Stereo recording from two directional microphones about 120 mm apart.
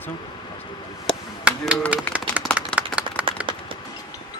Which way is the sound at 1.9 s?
10° right (ahead or behind).